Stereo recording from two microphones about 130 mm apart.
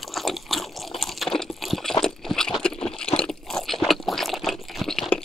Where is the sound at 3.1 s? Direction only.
5° left (ahead or behind).